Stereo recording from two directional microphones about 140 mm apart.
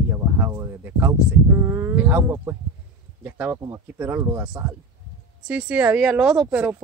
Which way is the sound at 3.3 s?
10° right (ahead or behind).